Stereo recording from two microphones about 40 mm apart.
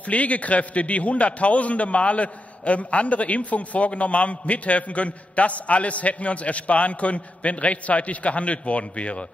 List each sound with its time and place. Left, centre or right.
0.0 s a man's voice: left